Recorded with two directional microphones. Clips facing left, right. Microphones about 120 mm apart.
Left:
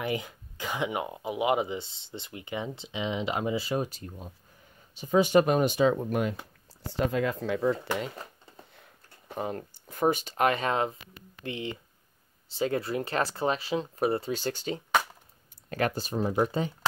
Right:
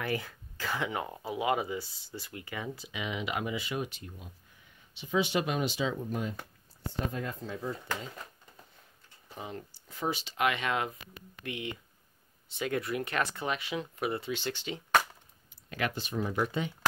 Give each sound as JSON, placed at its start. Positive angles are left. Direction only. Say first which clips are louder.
{"t": 0.0, "sound": "speech", "louder": "left 2 dB", "side_deg": 20}
{"t": 6.9, "sound": "speech", "louder": "left 8 dB", "side_deg": 90}
{"t": 8.7, "sound": "speech", "louder": "left 5 dB", "side_deg": 65}